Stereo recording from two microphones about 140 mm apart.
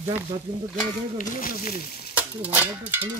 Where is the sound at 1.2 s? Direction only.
75° left (ahead or behind).